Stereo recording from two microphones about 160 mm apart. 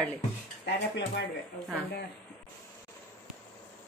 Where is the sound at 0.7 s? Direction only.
90° left.